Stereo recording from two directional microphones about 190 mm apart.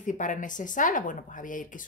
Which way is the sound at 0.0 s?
45° left (ahead or behind).